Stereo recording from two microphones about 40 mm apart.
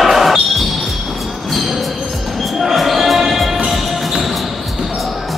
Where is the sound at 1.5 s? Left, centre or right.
Centre.